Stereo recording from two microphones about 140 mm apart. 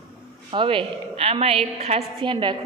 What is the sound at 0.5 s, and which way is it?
A woman's voice, 40° right (ahead or behind).